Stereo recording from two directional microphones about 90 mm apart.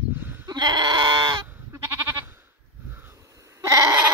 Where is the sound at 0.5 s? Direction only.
55° right (ahead or behind).